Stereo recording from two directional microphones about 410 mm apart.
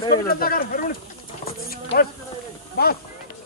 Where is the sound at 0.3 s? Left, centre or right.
Left.